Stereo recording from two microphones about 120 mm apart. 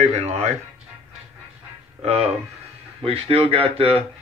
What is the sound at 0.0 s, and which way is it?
Speech, 60° right (ahead or behind).